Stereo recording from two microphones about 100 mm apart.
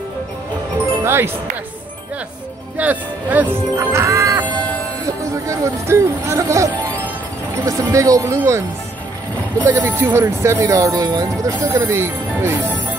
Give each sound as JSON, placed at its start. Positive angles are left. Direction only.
{"t": 1.0, "sound": "music", "side_deg": -25}
{"t": 2.8, "sound": "speech", "side_deg": -15}
{"t": 3.7, "sound": "music", "side_deg": -25}
{"t": 5.0, "sound": "speech", "side_deg": -30}
{"t": 9.7, "sound": "speech", "side_deg": -20}
{"t": 11.8, "sound": "speech", "side_deg": -25}